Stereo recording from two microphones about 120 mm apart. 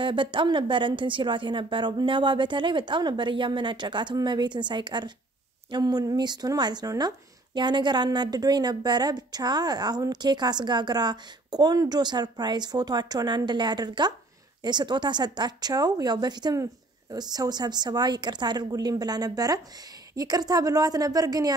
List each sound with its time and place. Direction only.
0.0 s speech: 45° right (ahead or behind)